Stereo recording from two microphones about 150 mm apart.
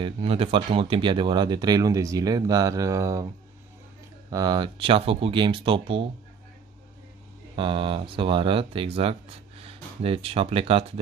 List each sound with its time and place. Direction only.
0.0 s speech: 40° right (ahead or behind); by 3.3 s 20° right (ahead or behind)
4.3 s speech: 25° right (ahead or behind)
7.5 s speech: 35° right (ahead or behind)